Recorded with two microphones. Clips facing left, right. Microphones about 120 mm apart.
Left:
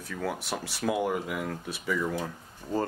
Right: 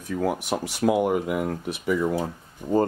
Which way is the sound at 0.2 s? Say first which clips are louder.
Right 6 dB; 15° right (ahead or behind).